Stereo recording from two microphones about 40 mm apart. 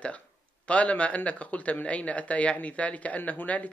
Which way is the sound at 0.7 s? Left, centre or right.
Left.